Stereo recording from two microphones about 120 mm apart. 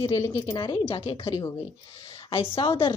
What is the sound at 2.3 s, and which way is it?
Speech, 45° left (ahead or behind).